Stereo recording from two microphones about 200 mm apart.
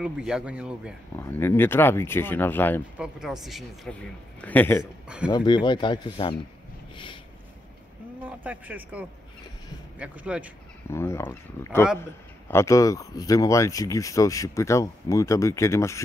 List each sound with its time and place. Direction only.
0.0 s a man's voice: 5° right (ahead or behind)
1.1 s speech: 10° left (ahead or behind)
3.0 s a man's voice: centre (ahead or behind)
5.0 s speech: 5° right (ahead or behind)
5.3 s speech: 20° left (ahead or behind)
8.2 s a man's voice: 10° right (ahead or behind)
10.9 s speech: 15° left (ahead or behind)